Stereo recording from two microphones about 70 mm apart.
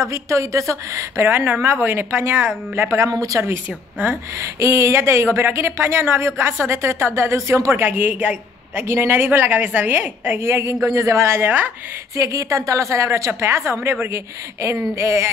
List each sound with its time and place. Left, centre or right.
0.1 s a woman's voice: right
1.2 s speech: right
3.1 s speech: right
4.4 s speech: right
8.7 s speech: right
12.2 s a woman's voice: right